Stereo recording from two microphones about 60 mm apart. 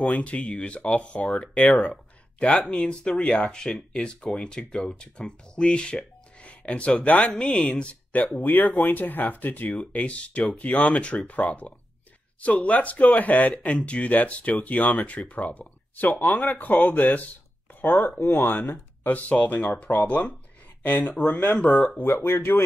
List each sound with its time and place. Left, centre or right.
0.0 s speech: left
18.2 s speech: left
21.0 s speech: centre
21.3 s speech: left
22.1 s speech: left